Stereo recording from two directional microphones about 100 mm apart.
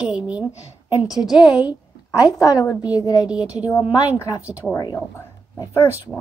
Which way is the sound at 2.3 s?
35° left (ahead or behind).